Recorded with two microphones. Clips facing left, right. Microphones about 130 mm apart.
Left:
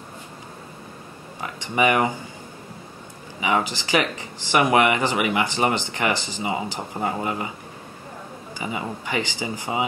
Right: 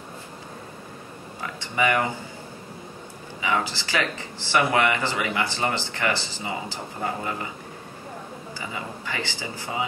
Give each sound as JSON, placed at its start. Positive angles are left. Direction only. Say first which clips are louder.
{"t": 1.4, "sound": "speech", "louder": "left 3 dB", "side_deg": 20}
{"t": 3.3, "sound": "speech", "louder": "left 3 dB", "side_deg": 20}
{"t": 8.5, "sound": "speech", "louder": "left 6 dB", "side_deg": 20}